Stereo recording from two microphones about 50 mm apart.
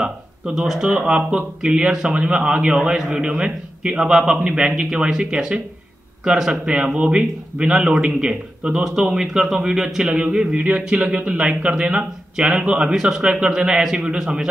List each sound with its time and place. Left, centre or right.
0.0 s a man's voice: centre
10.0 s a man's voice: centre